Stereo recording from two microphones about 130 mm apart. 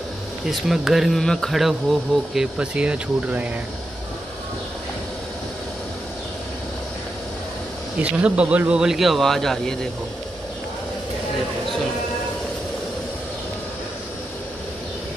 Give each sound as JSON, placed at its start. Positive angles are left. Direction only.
{"t": 0.5, "sound": "speech", "side_deg": 0}
{"t": 8.0, "sound": "speech", "side_deg": -10}